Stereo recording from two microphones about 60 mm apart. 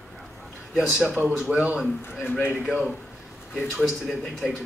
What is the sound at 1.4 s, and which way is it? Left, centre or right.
A man's voice, centre.